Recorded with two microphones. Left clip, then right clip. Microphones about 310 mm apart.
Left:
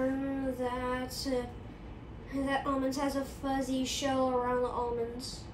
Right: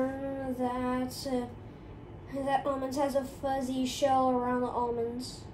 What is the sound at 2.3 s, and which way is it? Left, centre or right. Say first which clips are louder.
Speech: right 2 dB; centre.